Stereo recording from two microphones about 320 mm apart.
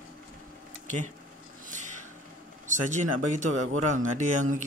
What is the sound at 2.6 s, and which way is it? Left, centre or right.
Speech, right.